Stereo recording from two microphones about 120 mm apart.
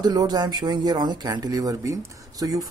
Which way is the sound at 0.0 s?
35° right (ahead or behind).